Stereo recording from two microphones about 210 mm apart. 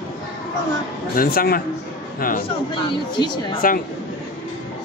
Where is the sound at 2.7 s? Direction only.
20° left (ahead or behind).